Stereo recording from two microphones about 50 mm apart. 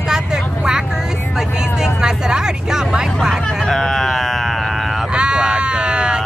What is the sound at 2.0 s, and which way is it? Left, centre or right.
Speech, centre.